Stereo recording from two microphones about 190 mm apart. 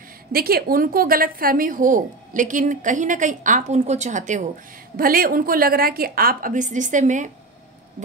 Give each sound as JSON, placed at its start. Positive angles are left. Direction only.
{"t": 0.3, "sound": "a woman's voice", "side_deg": -50}